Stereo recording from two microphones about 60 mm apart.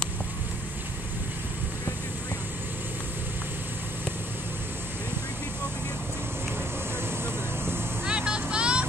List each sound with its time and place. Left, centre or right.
8.1 s vehicle: centre